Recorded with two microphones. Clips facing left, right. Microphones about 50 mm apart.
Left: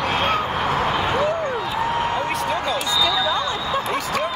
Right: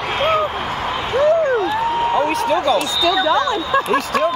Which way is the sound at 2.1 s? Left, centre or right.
Right.